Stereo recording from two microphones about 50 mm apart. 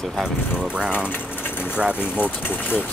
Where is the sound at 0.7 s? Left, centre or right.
Centre.